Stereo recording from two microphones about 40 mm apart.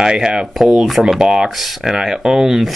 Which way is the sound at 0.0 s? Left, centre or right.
Right.